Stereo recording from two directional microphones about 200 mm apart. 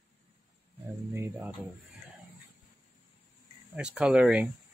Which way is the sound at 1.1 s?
10° right (ahead or behind).